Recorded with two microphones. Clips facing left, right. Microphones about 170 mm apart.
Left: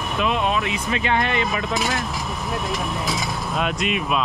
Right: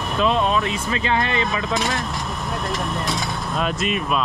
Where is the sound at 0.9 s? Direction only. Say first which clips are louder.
Even; 30° right (ahead or behind).